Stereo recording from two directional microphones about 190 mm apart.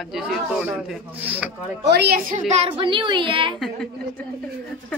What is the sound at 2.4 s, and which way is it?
A woman's voice, 35° right (ahead or behind).